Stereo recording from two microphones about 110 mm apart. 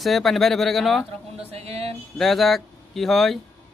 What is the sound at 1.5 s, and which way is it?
Speech, 70° right (ahead or behind).